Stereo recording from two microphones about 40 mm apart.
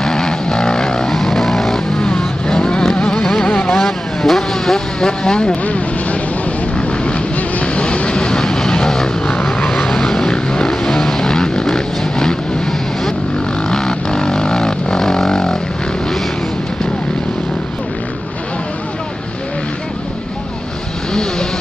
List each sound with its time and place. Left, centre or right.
0.0 s vehicle: centre
2.0 s vehicle: left
3.7 s vehicle: centre; by 5.6 s left
6.8 s vehicle: left
13.7 s vehicle: centre
21.1 s vehicle: centre